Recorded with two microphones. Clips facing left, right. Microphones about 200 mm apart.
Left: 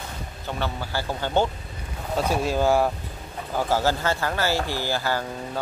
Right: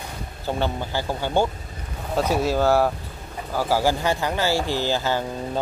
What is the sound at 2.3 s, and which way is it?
Speech, 15° left (ahead or behind).